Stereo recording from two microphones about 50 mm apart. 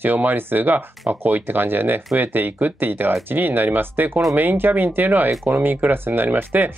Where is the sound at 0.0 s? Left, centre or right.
Right.